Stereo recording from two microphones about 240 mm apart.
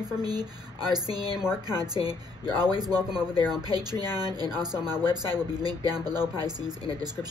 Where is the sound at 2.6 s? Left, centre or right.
Centre.